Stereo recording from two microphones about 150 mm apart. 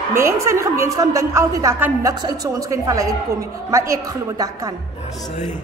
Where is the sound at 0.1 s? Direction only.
20° right (ahead or behind).